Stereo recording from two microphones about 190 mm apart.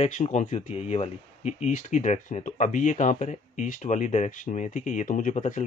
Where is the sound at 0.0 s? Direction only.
35° left (ahead or behind).